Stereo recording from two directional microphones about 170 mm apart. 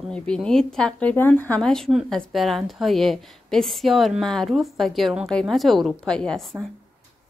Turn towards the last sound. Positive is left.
turn(degrees=5)  # may be behind; listen again after turning